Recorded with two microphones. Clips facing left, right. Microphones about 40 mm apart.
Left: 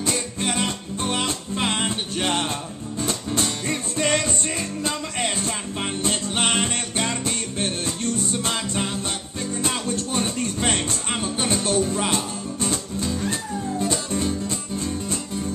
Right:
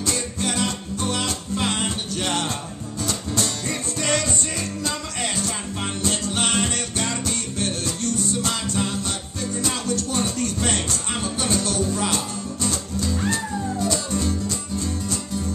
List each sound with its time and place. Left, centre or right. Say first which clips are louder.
0.0 s music: even; left